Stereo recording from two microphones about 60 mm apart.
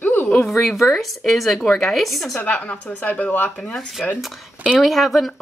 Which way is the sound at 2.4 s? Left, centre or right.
Left.